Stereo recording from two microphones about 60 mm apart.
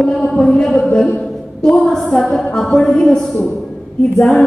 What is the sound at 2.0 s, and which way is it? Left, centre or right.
Speech, centre.